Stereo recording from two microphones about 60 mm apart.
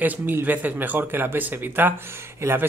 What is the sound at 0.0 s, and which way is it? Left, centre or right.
A man's voice, right.